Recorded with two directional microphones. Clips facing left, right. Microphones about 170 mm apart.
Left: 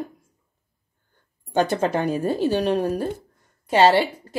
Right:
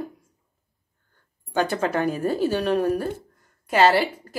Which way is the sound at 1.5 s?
25° left (ahead or behind).